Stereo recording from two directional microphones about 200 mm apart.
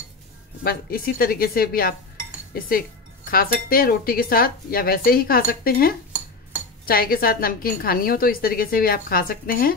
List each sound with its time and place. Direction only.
0.7 s a woman's voice: 50° left (ahead or behind)
3.3 s a woman's voice: 45° left (ahead or behind)